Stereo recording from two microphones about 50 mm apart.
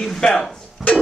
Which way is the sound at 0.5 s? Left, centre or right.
Left.